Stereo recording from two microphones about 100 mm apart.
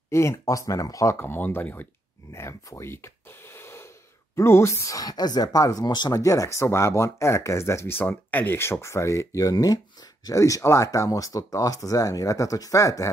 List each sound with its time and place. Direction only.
0.1 s speech: 30° left (ahead or behind)
2.3 s a sound: 25° left (ahead or behind)
4.4 s speech: 25° left (ahead or behind)